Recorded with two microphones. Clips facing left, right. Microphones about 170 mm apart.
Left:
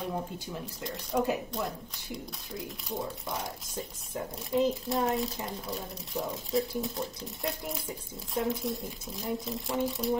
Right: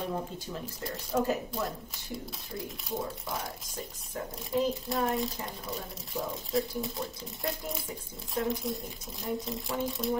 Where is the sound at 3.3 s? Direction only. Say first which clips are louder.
Left 1 dB; centre (ahead or behind).